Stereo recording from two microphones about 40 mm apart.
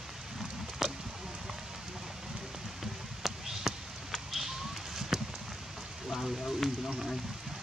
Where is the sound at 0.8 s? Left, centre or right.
Centre.